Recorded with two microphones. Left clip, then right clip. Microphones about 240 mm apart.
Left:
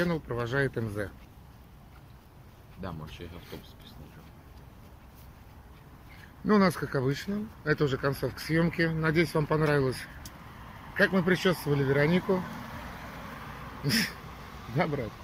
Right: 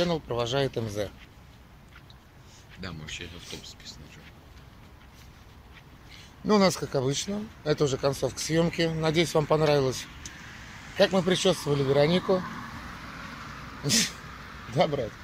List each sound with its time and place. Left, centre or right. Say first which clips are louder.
0.0 s speech: right 4 dB; centre
2.8 s speech: right 3 dB; centre
6.4 s speech: right 2 dB; centre
12.4 s a sound: right 2 dB; left
13.8 s speech: right 3 dB; centre